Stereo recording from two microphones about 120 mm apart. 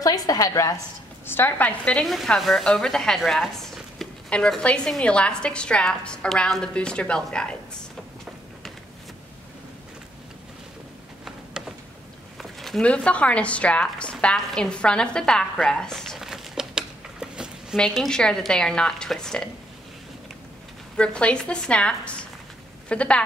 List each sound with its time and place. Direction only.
0.0 s a woman's voice: 30° left (ahead or behind)
1.2 s speech: 20° left (ahead or behind)
2.0 s speech: centre (ahead or behind)
11.6 s a sound: centre (ahead or behind)
12.4 s speech: centre (ahead or behind)
17.7 s a woman's voice: 5° left (ahead or behind)
20.9 s speech: 10° left (ahead or behind)